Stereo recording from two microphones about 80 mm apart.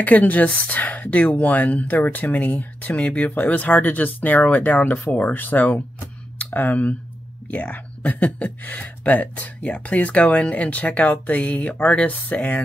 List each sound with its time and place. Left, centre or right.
0.0 s speech: centre